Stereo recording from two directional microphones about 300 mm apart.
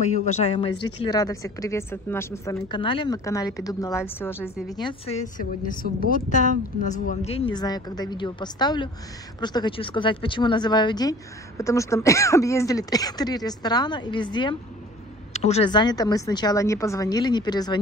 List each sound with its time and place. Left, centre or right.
0.0 s speech: left